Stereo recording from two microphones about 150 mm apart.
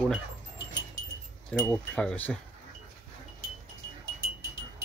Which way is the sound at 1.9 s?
5° left (ahead or behind).